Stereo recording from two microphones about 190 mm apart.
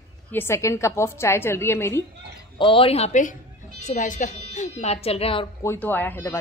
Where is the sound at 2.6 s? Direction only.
30° left (ahead or behind).